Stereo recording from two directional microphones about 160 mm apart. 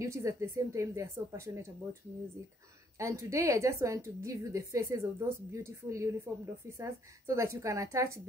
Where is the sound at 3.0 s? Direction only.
20° right (ahead or behind).